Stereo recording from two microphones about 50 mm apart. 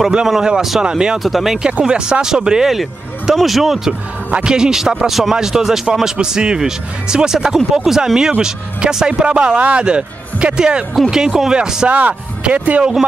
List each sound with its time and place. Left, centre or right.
0.4 s speech: centre
1.2 s speech: centre
1.7 s speech: right
4.3 s speech: centre
11.9 s speech: right